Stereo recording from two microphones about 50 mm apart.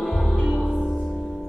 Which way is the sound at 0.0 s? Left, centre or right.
Centre.